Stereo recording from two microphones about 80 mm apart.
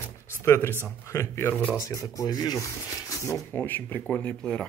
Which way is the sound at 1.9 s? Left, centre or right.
Left.